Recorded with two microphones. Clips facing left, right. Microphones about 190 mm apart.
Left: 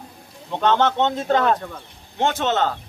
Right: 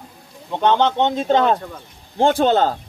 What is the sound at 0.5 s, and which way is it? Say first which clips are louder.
Speech: right 2 dB; 15° right (ahead or behind).